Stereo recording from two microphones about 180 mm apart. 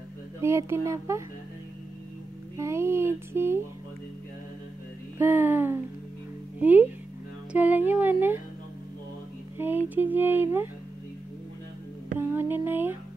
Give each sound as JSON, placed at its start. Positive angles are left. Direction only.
{"t": 0.4, "sound": "music", "side_deg": -15}
{"t": 2.5, "sound": "music", "side_deg": -15}
{"t": 5.2, "sound": "music", "side_deg": -10}
{"t": 9.6, "sound": "music", "side_deg": -10}
{"t": 12.2, "sound": "music", "side_deg": -10}